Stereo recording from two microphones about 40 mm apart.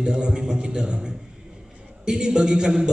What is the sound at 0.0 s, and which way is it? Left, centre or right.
A man's voice, centre.